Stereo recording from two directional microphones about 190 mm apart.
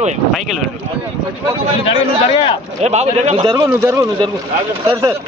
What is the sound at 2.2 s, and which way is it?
Speech, 30° left (ahead or behind).